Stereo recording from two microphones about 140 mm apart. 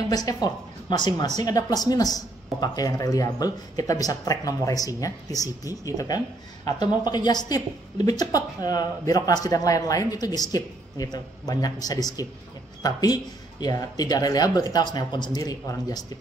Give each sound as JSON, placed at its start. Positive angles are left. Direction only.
{"t": 0.1, "sound": "speech", "side_deg": 25}